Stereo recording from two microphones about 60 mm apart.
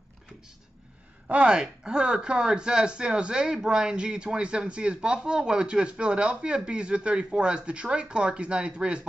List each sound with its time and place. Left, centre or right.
1.2 s speech: centre